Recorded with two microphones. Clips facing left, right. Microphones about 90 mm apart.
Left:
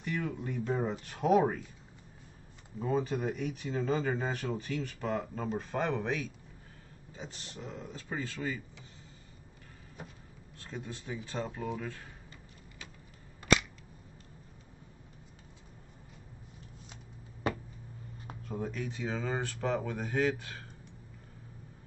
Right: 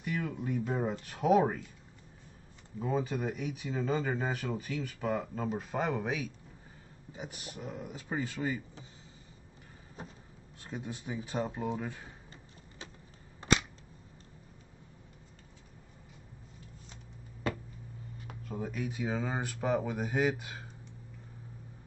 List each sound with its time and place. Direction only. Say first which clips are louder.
0.0 s speech: even; 5° right (ahead or behind)
2.8 s speech: left 1 dB; centre (ahead or behind)
10.6 s speech: right 2 dB; 15° right (ahead or behind)
13.4 s camera: left 1 dB; 30° right (ahead or behind)
18.5 s speech: even; 5° right (ahead or behind)